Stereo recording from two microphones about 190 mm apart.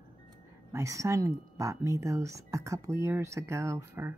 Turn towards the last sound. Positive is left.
turn(degrees=-15)  # may be behind; listen again after turning